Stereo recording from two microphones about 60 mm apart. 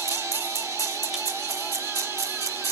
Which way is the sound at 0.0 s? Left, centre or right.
Right.